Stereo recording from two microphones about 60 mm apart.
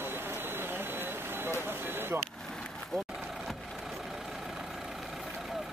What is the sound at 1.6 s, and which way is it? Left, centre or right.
Speech, right.